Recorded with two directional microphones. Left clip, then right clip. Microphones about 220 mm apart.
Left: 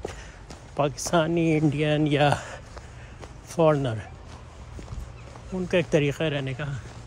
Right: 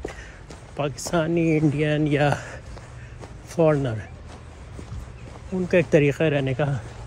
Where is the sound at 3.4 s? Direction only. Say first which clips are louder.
Right 1 dB; 15° left (ahead or behind).